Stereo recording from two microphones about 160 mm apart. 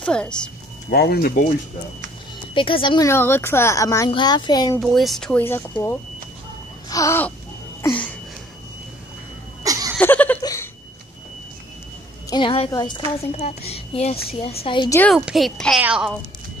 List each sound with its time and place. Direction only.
0.0 s speech: 5° left (ahead or behind)
0.8 s speech: 80° left
2.5 s a woman's voice: 30° left (ahead or behind)
3.1 s speech: 15° left (ahead or behind)
4.7 s speech: centre (ahead or behind)
7.8 s a sound: 10° left (ahead or behind)
9.6 s cough: 20° right (ahead or behind)
9.9 s a sound: 10° left (ahead or behind)
12.3 s a woman's voice: 30° left (ahead or behind)
15.1 s speech: 5° right (ahead or behind)